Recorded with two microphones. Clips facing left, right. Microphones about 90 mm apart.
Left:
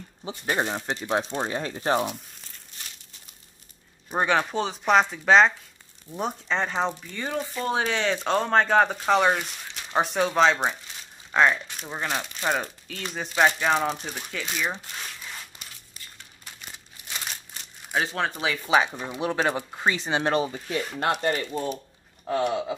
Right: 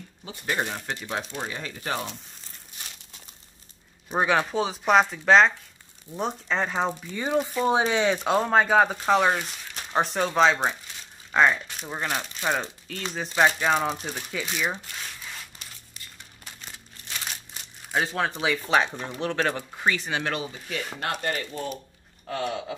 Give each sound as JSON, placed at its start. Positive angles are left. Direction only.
{"t": 0.2, "sound": "speech", "side_deg": 25}
{"t": 4.1, "sound": "speech", "side_deg": 0}
{"t": 17.9, "sound": "speech", "side_deg": 0}
{"t": 19.8, "sound": "speech", "side_deg": 25}
{"t": 22.3, "sound": "a sound", "side_deg": 15}